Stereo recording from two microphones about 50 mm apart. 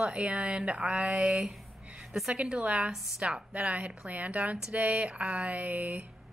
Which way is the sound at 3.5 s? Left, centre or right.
Right.